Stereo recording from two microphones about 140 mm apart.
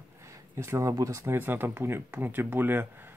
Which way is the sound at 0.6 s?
20° right (ahead or behind).